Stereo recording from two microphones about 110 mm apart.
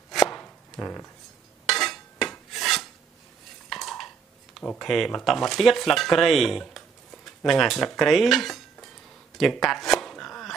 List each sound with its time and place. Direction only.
0.1 s chopping: centre (ahead or behind)
0.4 s chopping: 15° left (ahead or behind)
1.7 s a sound: centre (ahead or behind)
2.3 s filing: 5° left (ahead or behind)
3.6 s dishes: 5° left (ahead or behind)
4.6 s speech: 5° left (ahead or behind)
9.4 s a sound: centre (ahead or behind)